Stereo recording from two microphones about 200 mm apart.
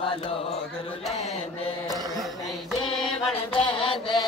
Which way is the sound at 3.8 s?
25° left (ahead or behind).